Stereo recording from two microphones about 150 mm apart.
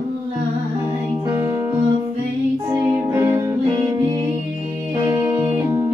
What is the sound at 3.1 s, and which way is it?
Music, 15° right (ahead or behind).